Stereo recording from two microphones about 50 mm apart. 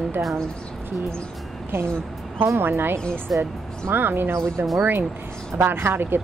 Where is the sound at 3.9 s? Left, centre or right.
Right.